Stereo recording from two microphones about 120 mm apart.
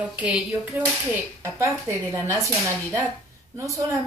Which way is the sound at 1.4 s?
20° right (ahead or behind).